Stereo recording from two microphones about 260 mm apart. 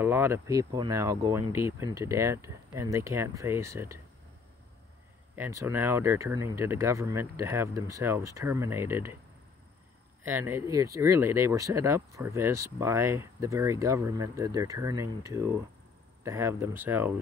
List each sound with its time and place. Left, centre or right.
0.0 s speech: centre
5.3 s speech: centre
10.2 s speech: centre